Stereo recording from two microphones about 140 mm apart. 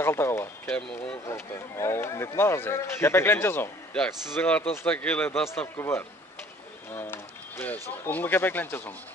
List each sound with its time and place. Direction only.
0.0 s a man's voice: 15° left (ahead or behind)
5.5 s a man's voice: 20° left (ahead or behind)